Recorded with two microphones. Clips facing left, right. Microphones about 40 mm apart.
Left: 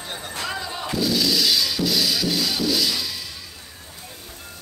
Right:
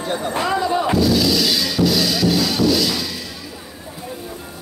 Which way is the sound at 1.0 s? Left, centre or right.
Centre.